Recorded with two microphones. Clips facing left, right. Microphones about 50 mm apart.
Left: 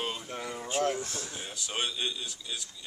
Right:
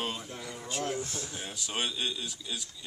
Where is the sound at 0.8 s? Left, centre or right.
Left.